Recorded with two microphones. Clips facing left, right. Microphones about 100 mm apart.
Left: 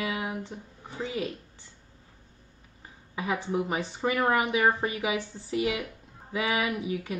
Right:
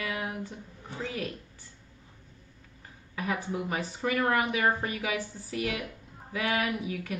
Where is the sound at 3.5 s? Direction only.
20° left (ahead or behind).